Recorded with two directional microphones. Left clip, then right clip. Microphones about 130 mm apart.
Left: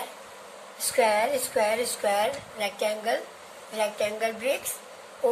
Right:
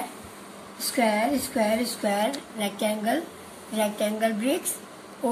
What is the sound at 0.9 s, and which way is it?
A woman's voice, 45° left (ahead or behind).